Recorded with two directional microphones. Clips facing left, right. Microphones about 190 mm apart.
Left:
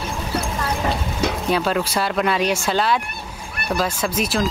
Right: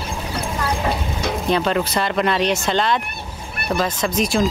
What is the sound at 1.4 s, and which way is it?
Speech, 5° left (ahead or behind).